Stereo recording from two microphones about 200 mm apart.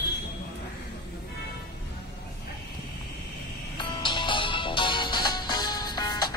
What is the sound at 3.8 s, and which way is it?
Music, 25° left (ahead or behind).